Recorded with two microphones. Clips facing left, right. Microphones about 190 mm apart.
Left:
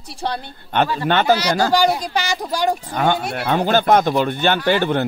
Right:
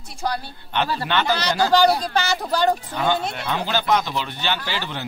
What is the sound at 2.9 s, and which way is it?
Speech, 55° left (ahead or behind).